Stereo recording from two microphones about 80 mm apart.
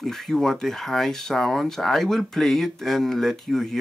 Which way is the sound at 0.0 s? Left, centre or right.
Centre.